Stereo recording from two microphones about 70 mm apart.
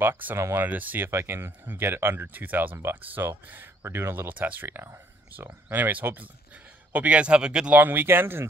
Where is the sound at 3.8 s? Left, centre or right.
Right; by 7.8 s centre.